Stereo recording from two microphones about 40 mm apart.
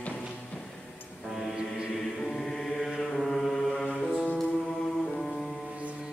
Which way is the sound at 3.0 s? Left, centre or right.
Centre.